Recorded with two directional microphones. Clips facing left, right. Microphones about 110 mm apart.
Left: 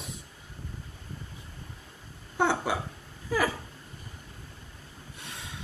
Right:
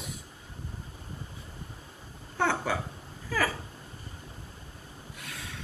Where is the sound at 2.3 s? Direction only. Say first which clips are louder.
Left 2 dB; 15° left (ahead or behind).